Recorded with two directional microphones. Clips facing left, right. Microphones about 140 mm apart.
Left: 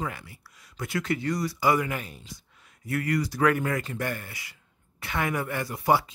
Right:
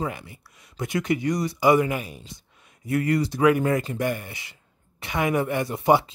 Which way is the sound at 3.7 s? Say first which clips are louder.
Right 6 dB; 25° right (ahead or behind).